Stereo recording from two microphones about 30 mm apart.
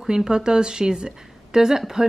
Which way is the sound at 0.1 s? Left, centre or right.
Right.